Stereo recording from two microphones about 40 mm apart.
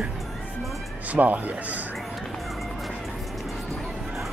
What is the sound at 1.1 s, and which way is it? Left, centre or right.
Speech, right.